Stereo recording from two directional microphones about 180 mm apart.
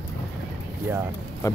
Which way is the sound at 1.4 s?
15° left (ahead or behind).